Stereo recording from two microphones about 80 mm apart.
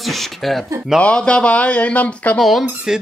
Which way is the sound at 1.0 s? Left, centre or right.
Centre.